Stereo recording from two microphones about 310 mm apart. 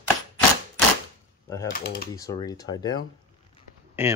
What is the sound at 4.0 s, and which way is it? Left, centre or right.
Speech, centre.